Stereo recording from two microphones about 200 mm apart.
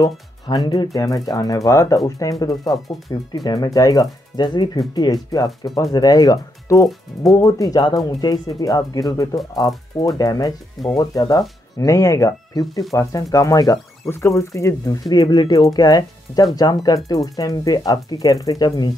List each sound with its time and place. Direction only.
0.0 s speech: 20° left (ahead or behind)